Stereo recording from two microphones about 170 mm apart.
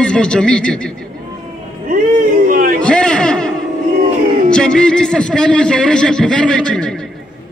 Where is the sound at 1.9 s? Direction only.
55° right (ahead or behind).